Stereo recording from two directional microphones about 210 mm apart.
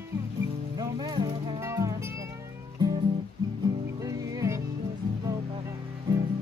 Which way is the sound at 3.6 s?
15° right (ahead or behind).